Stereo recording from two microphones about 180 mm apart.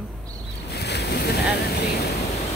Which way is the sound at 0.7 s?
65° left (ahead or behind).